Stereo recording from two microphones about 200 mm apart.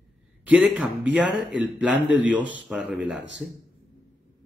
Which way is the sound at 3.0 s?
60° right (ahead or behind).